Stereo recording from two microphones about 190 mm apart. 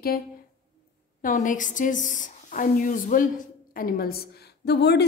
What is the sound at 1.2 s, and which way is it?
A woman's voice, 45° left (ahead or behind).